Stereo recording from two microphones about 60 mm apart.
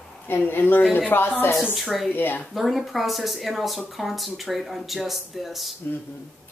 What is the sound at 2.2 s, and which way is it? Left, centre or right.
Speech, left.